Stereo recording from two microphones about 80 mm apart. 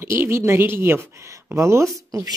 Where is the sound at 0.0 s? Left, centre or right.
Right.